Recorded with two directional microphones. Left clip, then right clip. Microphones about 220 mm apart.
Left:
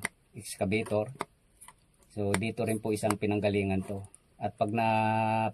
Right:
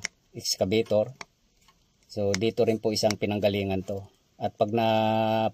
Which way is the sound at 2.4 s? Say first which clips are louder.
Right 8 dB; 30° right (ahead or behind).